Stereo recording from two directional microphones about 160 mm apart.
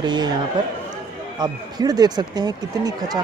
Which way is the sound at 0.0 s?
25° right (ahead or behind).